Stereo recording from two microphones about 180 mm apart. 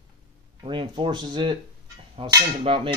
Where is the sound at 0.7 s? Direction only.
25° right (ahead or behind).